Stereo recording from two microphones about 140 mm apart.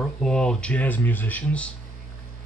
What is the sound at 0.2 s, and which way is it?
Speech, 5° left (ahead or behind).